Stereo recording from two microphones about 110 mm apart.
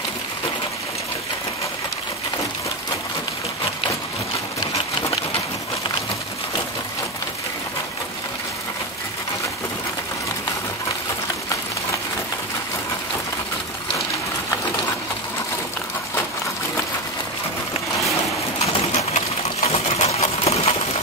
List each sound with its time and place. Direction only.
18.6 s pigeon: 70° left (ahead or behind)